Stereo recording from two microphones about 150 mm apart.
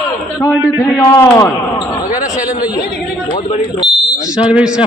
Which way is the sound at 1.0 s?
20° left (ahead or behind).